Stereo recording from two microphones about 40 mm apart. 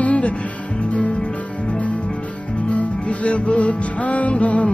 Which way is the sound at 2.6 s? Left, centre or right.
Left.